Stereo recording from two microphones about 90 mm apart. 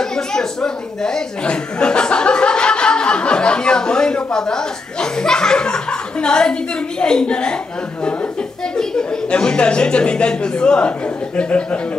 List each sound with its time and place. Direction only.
0.0 s speech: 5° left (ahead or behind)
8.7 s speech: 10° left (ahead or behind)